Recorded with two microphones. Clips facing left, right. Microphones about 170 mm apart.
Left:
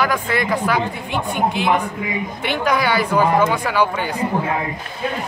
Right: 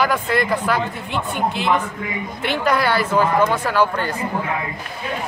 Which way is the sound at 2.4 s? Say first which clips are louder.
Even; centre (ahead or behind).